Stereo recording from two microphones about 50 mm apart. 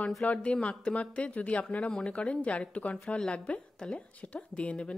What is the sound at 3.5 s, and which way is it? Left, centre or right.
Speech, centre.